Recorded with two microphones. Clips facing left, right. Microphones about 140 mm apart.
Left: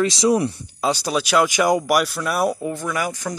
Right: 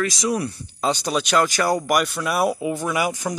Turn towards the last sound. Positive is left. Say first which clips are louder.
# right 2 dB
turn(degrees=-15)  # may be behind; listen again after turning